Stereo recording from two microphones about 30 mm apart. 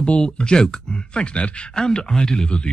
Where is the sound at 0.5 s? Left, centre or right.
Left.